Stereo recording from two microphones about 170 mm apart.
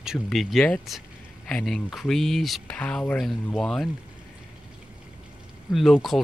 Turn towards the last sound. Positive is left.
turn(degrees=0)  # may be behind; listen again after turning